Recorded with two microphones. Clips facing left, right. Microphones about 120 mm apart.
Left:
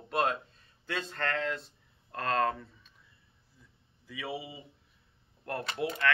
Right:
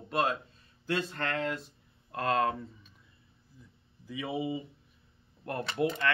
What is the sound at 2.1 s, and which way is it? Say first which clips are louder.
Speech: right 1 dB; 10° right (ahead or behind).